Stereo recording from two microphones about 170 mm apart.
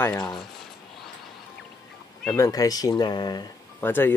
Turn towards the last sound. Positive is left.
turn(degrees=10)  # may be behind; listen again after turning